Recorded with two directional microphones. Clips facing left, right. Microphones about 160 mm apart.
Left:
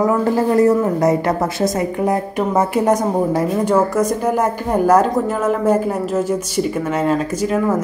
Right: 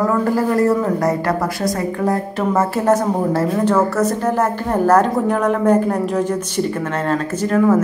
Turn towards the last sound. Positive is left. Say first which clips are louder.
# right 3 dB
turn(degrees=5)  # may be behind; listen again after turning